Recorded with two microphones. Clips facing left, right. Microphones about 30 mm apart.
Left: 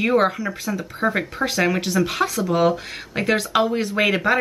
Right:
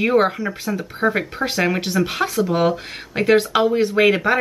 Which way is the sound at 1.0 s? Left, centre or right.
Centre.